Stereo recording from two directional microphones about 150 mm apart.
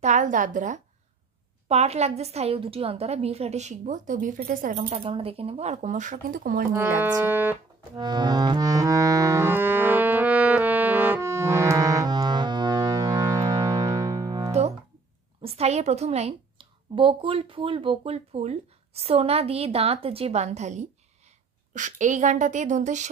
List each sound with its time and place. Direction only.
0.0 s a woman's voice: 55° right (ahead or behind)
1.7 s a woman's voice: 45° right (ahead or behind); by 4.8 s 65° right (ahead or behind)
4.8 s a woman's voice: 40° right (ahead or behind); by 6.7 s 65° right (ahead or behind)
6.7 s music: 15° right (ahead or behind)
7.9 s music: 30° right (ahead or behind)
15.4 s a woman's voice: 45° right (ahead or behind)